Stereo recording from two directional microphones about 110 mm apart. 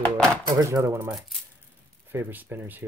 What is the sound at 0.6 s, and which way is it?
Speech, 30° right (ahead or behind).